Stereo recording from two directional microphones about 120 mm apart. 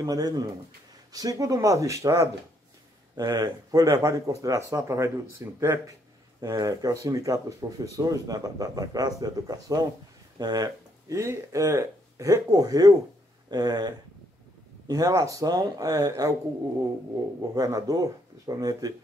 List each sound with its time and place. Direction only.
0.0 s speech: 30° right (ahead or behind)
17.6 s speech: 30° right (ahead or behind)